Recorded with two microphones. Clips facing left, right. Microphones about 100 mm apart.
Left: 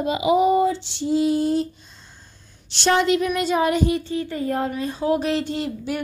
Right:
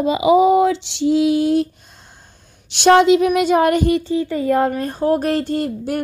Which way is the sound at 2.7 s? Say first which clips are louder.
Right 8 dB; 60° right (ahead or behind).